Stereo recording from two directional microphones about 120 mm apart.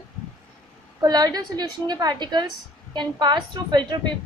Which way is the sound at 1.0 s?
35° right (ahead or behind).